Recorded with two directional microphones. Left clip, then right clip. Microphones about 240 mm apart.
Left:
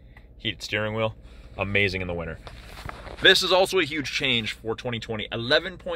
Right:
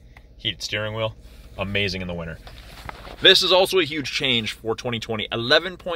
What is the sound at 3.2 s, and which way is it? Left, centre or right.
Speech, centre.